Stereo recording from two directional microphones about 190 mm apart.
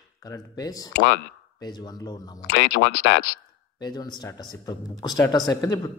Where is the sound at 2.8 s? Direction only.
70° left (ahead or behind).